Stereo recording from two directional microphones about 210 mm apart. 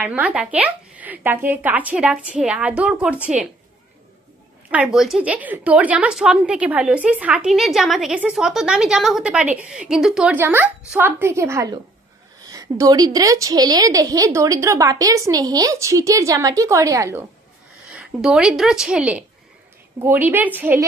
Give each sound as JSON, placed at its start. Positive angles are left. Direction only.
{"t": 0.0, "sound": "a woman's voice", "side_deg": -5}
{"t": 4.6, "sound": "a woman's voice", "side_deg": -5}